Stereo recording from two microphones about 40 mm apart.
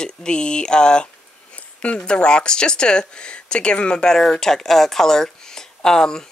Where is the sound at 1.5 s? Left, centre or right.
Left.